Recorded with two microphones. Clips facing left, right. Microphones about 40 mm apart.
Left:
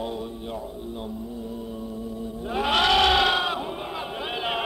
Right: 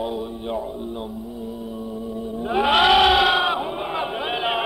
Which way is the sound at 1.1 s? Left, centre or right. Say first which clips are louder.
Right 2 dB; centre.